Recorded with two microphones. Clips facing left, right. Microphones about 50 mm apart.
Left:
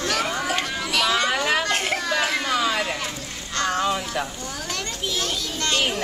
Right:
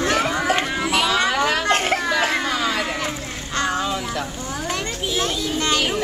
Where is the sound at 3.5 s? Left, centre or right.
Centre.